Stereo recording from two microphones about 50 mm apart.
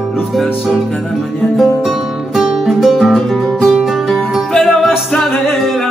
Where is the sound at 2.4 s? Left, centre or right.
Centre.